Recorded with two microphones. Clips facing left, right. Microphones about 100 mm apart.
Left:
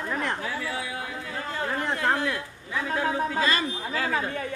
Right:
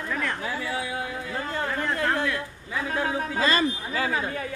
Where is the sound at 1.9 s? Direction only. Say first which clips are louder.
Even; 25° left (ahead or behind).